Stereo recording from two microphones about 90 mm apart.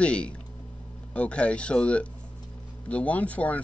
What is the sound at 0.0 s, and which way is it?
Speech, 10° left (ahead or behind).